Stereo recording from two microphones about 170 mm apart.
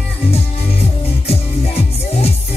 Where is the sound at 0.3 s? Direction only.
35° left (ahead or behind).